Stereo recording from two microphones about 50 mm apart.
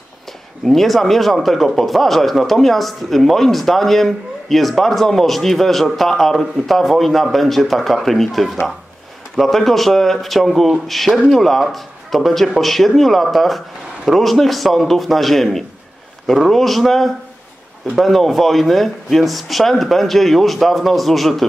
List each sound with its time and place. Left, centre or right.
0.7 s speech: centre